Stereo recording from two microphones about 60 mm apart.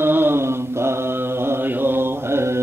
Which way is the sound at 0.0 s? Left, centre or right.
Right.